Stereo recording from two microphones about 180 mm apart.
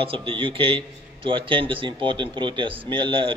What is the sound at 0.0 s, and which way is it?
Speech, 30° right (ahead or behind).